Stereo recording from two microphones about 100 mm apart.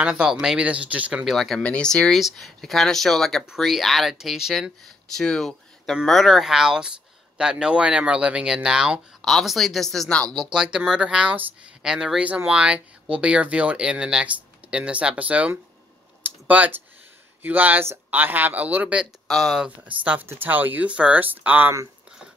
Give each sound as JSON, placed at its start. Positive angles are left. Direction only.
{"t": 0.0, "sound": "speech", "side_deg": -10}
{"t": 1.2, "sound": "speech", "side_deg": 0}
{"t": 19.2, "sound": "speech", "side_deg": 0}
{"t": 19.9, "sound": "speech", "side_deg": -15}